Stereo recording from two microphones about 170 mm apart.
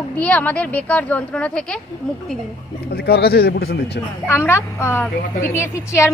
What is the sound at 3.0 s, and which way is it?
Speech, 70° left (ahead or behind).